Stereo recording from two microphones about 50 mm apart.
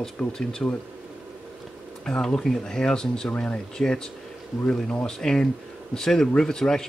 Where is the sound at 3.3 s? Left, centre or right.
Left.